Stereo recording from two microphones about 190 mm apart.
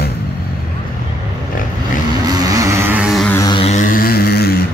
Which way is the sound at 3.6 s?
35° left (ahead or behind).